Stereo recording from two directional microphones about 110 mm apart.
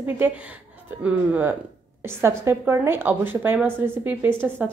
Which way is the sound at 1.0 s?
15° right (ahead or behind).